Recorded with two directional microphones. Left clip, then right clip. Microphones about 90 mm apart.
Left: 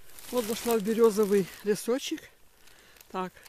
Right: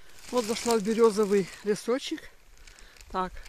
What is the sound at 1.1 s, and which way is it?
Speech, 30° left (ahead or behind).